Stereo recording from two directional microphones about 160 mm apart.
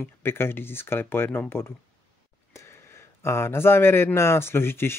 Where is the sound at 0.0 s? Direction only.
15° left (ahead or behind).